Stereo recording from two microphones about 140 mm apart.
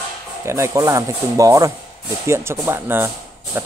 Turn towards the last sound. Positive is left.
turn(degrees=-15)  # may be behind; listen again after turning